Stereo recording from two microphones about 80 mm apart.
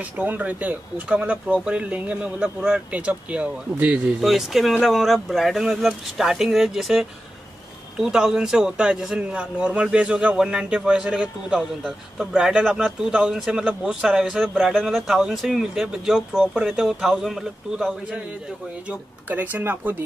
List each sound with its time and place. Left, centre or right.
0.2 s speech: right
4.3 s speech: centre
18.9 s speech: right